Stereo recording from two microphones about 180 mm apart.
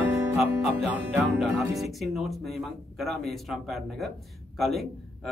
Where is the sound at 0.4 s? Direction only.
Centre (ahead or behind).